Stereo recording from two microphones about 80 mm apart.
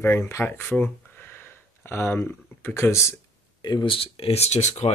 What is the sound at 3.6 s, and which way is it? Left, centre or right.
Speech, left.